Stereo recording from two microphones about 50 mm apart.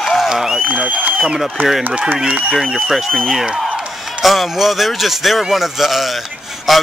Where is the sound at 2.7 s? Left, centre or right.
Centre.